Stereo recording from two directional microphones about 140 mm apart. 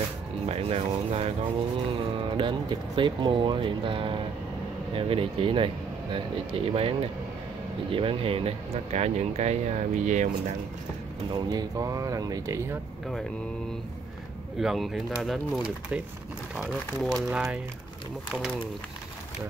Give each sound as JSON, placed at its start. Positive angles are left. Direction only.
{"t": 0.5, "sound": "speech", "side_deg": -50}
{"t": 11.3, "sound": "speech", "side_deg": -25}
{"t": 14.6, "sound": "speech", "side_deg": -5}